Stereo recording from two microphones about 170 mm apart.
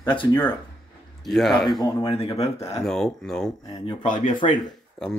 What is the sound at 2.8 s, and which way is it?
Speech, 5° left (ahead or behind).